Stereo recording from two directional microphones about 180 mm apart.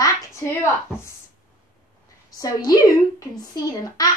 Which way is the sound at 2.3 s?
20° left (ahead or behind).